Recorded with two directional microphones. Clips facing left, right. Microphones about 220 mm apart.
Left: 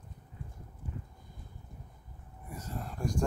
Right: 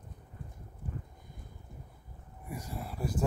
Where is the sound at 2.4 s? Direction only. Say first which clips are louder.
Right 1 dB; 10° right (ahead or behind).